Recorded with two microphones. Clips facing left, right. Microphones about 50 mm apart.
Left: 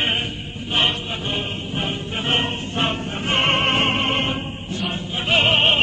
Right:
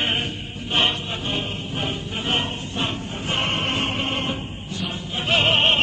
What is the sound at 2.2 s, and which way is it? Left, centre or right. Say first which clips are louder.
Choir: left 3 dB; left.